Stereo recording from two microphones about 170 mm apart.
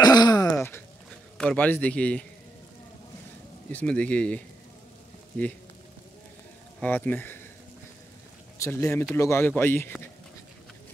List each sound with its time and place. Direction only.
0.0 s throat clearing: 25° left (ahead or behind)
0.6 s a sound: 10° left (ahead or behind)
1.4 s speech: 5° left (ahead or behind)
3.7 s speech: 5° left (ahead or behind)
6.8 s speech: 10° left (ahead or behind)
8.5 s speech: 15° left (ahead or behind)